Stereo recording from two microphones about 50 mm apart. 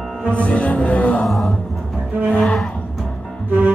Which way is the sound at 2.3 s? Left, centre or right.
Left.